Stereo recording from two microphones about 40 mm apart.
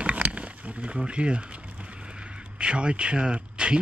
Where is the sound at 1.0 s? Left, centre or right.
Right.